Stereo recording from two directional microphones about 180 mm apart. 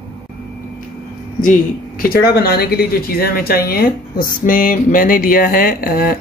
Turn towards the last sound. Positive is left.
turn(degrees=55)  # may be behind; listen again after turning